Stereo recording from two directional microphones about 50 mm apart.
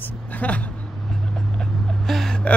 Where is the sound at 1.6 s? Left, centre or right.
Centre.